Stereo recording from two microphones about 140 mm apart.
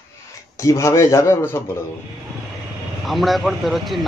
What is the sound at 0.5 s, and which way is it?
A man's voice, 20° left (ahead or behind).